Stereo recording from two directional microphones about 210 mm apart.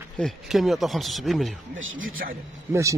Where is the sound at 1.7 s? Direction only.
70° right (ahead or behind).